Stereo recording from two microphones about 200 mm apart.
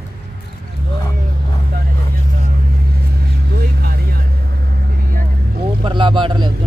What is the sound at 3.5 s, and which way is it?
Vehicle, 55° right (ahead or behind).